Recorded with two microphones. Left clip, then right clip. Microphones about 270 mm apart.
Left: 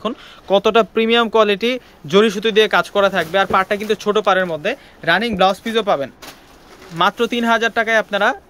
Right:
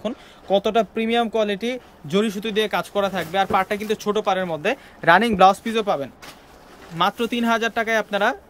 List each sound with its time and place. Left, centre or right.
0.0 s speech: centre